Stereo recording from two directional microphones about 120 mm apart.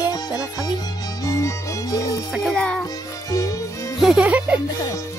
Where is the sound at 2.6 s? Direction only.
10° left (ahead or behind).